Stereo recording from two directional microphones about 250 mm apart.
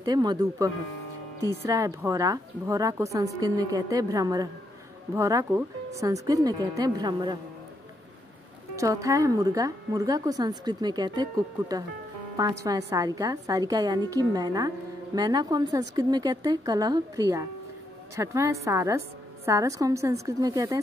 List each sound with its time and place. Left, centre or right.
0.0 s speech: centre
8.7 s speech: centre